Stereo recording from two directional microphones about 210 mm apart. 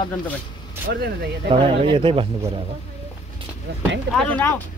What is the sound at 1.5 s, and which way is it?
Speech, 25° right (ahead or behind).